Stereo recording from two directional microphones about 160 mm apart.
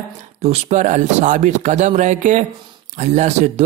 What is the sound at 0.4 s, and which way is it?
Speech, 45° right (ahead or behind).